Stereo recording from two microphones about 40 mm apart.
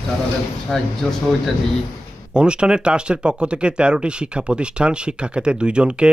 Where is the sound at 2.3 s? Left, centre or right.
Right.